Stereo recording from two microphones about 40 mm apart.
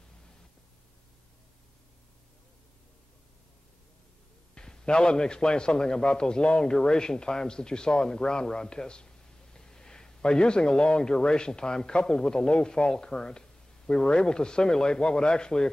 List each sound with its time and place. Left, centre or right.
4.6 s a man's voice: left